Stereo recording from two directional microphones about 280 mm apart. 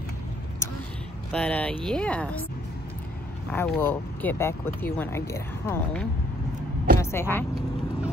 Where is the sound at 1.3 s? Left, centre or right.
Centre.